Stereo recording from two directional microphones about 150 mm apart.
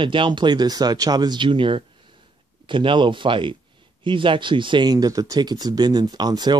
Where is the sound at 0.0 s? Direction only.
35° right (ahead or behind).